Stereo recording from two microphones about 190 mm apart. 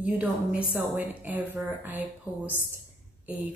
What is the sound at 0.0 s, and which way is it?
A woman's voice, 10° right (ahead or behind).